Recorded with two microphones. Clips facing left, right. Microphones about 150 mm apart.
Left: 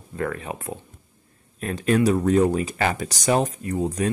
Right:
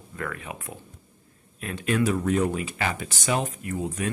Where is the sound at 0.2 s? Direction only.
35° left (ahead or behind).